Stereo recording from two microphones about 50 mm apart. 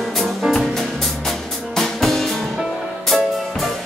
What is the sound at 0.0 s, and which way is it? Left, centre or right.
Music, centre.